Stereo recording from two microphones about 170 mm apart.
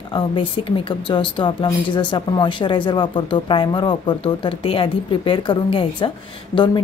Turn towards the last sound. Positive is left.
turn(degrees=30)  # may be behind; listen again after turning